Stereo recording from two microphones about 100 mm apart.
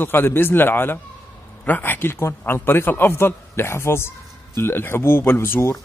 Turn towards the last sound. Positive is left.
turn(degrees=25)  # may be behind; listen again after turning